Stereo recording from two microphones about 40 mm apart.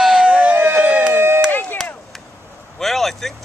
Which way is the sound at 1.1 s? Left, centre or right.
Right.